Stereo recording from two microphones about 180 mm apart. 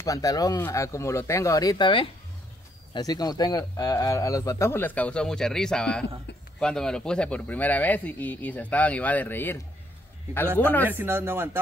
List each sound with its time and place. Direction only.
0.0 s speech: 20° left (ahead or behind)
10.6 s speech: 10° left (ahead or behind)
10.9 s speech: 10° right (ahead or behind)